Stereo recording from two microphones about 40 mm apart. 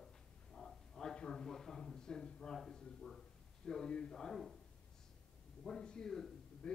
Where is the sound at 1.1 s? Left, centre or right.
Left.